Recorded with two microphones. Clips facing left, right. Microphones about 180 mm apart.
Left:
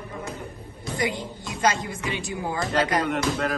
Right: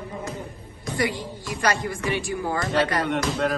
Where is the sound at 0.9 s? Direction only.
20° left (ahead or behind).